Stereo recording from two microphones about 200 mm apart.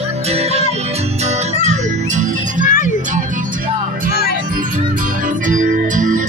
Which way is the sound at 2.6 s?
40° left (ahead or behind).